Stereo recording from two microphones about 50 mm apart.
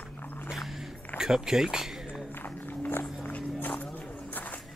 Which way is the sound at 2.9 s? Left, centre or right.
Left.